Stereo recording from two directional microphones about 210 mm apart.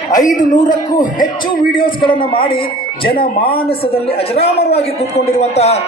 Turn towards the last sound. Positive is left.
turn(degrees=30)  # may be behind; listen again after turning